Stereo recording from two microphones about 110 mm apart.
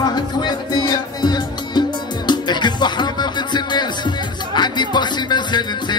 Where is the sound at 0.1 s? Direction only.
40° left (ahead or behind).